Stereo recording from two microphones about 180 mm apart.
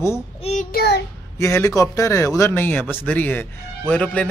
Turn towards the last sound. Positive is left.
turn(degrees=5)  # may be behind; listen again after turning